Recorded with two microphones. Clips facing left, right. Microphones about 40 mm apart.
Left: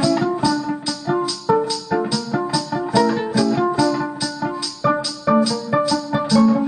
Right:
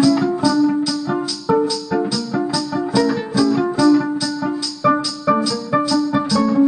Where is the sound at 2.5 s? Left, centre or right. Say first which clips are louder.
Left 1 dB; left.